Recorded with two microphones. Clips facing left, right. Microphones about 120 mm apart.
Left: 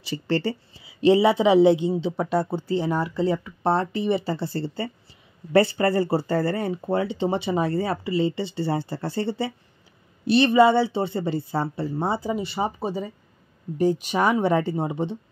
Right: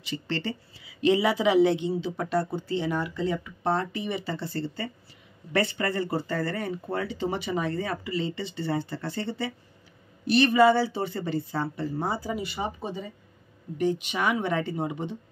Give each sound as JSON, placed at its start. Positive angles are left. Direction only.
{"t": 0.0, "sound": "speech", "side_deg": 35}
{"t": 2.7, "sound": "speech", "side_deg": 35}